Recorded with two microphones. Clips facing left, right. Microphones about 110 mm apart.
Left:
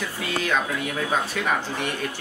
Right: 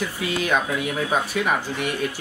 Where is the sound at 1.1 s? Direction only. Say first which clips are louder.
Right 2 dB; 10° right (ahead or behind).